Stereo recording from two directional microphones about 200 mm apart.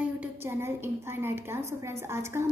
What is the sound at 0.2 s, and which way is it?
A woman's voice, 10° right (ahead or behind).